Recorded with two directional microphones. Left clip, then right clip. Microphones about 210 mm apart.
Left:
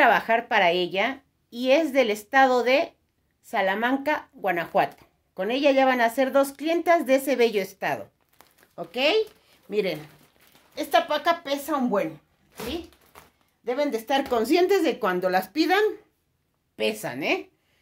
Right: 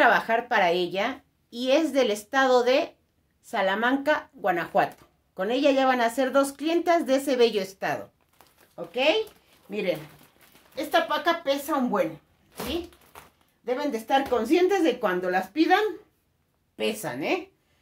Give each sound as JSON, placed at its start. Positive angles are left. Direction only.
{"t": 0.0, "sound": "speech", "side_deg": 25}
{"t": 8.7, "sound": "speech", "side_deg": 55}
{"t": 13.7, "sound": "speech", "side_deg": 50}
{"t": 16.7, "sound": "speech", "side_deg": 25}